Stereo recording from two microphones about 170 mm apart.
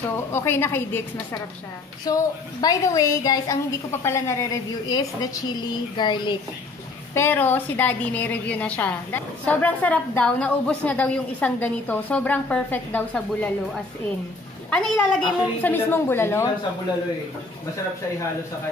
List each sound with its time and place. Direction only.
0.3 s a woman's voice: 15° left (ahead or behind)
7.2 s a woman's voice: 10° left (ahead or behind)
14.7 s a woman's voice: 5° left (ahead or behind)